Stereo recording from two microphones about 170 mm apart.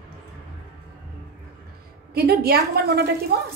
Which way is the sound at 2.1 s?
65° right (ahead or behind).